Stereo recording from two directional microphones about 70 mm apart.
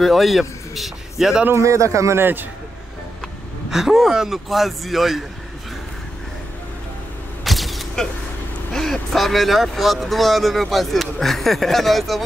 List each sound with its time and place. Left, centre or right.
0.0 s speech: centre
1.5 s a man's voice: right
3.7 s speech: centre
7.4 s a sound: centre
9.1 s speech: centre